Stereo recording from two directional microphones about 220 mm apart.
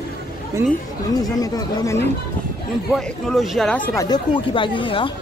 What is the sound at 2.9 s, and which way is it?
Speech, centre (ahead or behind).